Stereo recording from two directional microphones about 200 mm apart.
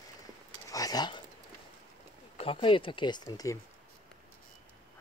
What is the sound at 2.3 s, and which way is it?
Speech, 25° left (ahead or behind).